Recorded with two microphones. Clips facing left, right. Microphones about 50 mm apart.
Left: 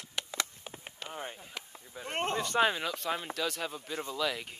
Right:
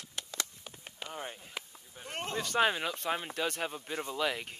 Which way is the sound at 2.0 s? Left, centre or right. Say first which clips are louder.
Left 4 dB; left.